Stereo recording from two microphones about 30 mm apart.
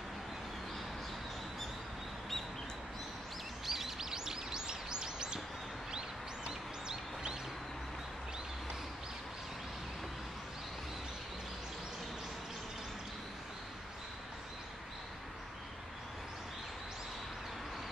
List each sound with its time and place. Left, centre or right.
3.6 s bird: centre
4.1 s bird: centre